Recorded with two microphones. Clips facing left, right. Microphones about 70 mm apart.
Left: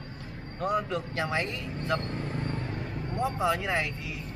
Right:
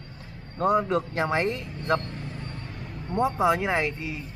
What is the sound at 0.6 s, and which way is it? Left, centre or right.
Speech, right.